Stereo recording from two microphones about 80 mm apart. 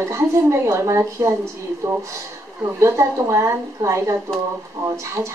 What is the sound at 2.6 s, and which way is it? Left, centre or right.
A woman's voice, right.